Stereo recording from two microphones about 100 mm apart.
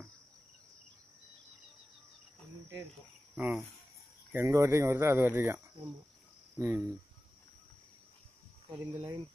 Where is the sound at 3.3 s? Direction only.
15° right (ahead or behind).